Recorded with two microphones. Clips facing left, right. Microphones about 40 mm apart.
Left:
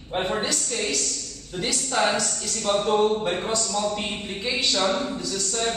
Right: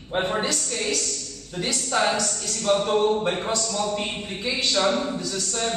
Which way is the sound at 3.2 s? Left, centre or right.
Centre.